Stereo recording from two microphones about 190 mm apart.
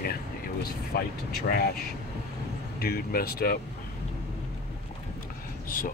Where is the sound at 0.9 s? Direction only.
50° left (ahead or behind).